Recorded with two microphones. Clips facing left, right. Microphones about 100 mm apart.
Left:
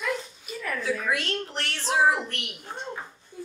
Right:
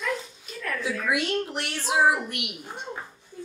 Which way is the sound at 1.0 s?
15° right (ahead or behind).